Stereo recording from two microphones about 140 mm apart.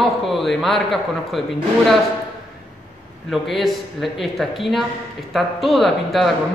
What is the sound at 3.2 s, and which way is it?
A man's voice, centre (ahead or behind).